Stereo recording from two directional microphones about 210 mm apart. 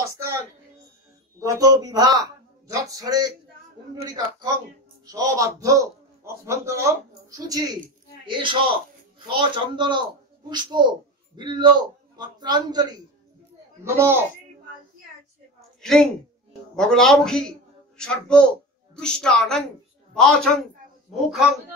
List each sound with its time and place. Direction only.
0.0 s a sound: 15° right (ahead or behind)
1.4 s a man's voice: 15° right (ahead or behind)
15.8 s a woman's voice: 5° left (ahead or behind)